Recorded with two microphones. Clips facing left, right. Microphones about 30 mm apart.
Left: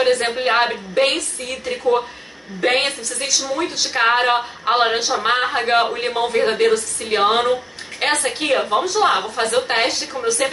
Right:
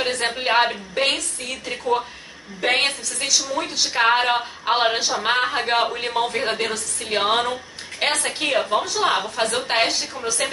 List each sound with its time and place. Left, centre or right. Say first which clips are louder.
0.0 s a woman's voice: left 5 dB; centre